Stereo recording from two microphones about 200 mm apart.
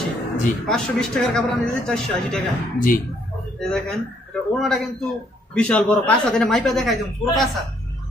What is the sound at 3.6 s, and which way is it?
Speech, 5° left (ahead or behind).